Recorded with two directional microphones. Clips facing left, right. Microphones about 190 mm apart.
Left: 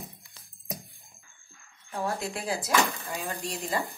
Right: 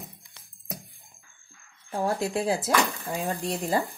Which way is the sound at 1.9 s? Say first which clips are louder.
Right 4 dB; 35° right (ahead or behind).